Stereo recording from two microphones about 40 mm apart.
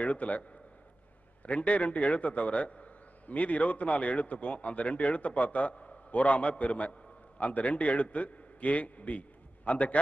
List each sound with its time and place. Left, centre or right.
0.0 s a man's voice: left